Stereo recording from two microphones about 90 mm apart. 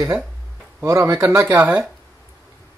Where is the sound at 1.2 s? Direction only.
30° right (ahead or behind).